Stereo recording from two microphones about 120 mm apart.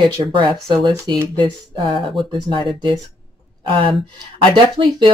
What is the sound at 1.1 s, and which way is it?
Speech, 40° right (ahead or behind).